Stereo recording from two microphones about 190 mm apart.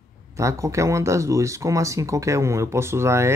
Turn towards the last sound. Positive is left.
turn(degrees=-15)  # may be behind; listen again after turning